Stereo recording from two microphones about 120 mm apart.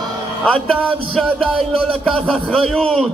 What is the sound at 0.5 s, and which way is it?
A man's voice, 5° left (ahead or behind).